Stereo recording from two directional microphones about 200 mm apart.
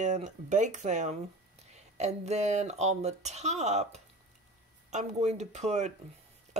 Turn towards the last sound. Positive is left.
turn(degrees=-35)  # may be behind; listen again after turning